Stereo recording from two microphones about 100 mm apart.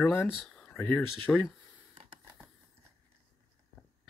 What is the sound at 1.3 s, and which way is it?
Speech, 10° left (ahead or behind).